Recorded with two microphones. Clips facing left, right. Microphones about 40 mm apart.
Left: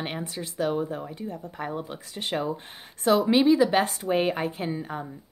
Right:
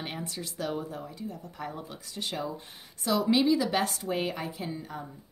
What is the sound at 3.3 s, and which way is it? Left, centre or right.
Speech, left.